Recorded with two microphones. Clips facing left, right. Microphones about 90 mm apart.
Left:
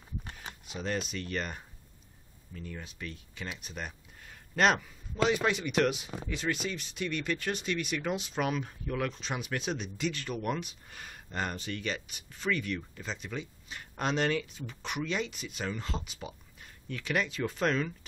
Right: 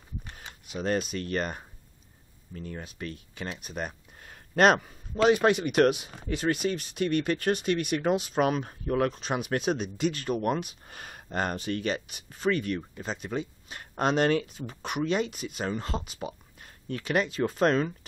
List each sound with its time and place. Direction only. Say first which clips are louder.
0.7 s speech: right 6 dB; 45° right (ahead or behind)